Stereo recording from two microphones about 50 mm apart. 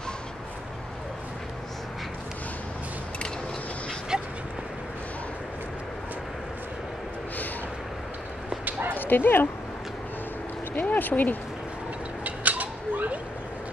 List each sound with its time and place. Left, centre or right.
4.1 s dog: centre
8.9 s speech: left
10.8 s speech: left
12.3 s creak: right